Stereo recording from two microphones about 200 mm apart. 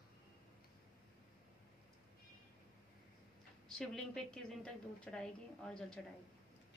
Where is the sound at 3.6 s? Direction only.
5° left (ahead or behind).